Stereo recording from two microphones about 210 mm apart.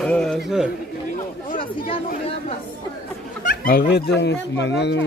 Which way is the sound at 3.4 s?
45° left (ahead or behind).